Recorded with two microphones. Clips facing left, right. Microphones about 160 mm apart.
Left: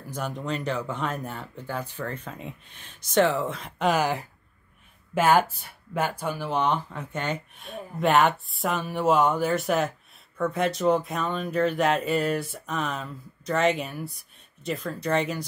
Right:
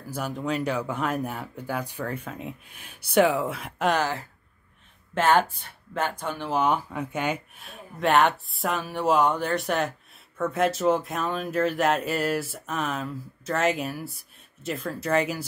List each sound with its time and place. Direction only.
0.1 s speech: 5° right (ahead or behind)
4.0 s speech: 15° left (ahead or behind); by 15.4 s 5° right (ahead or behind)